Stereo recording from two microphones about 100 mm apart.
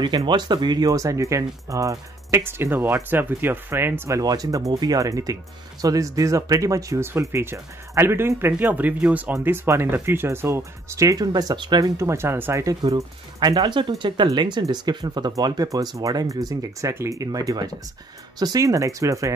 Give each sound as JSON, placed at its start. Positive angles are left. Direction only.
{"t": 0.3, "sound": "speech", "side_deg": -50}
{"t": 4.2, "sound": "speech", "side_deg": -40}
{"t": 11.8, "sound": "speech", "side_deg": -30}
{"t": 12.8, "sound": "speech", "side_deg": -40}